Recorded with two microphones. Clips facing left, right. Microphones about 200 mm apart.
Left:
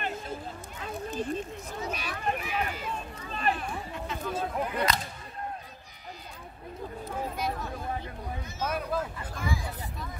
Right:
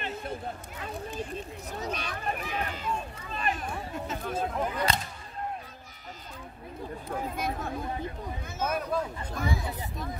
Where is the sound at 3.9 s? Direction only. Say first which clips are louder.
Right 1 dB; 50° right (ahead or behind).